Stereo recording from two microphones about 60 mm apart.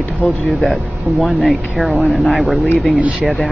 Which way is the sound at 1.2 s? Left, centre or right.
Centre.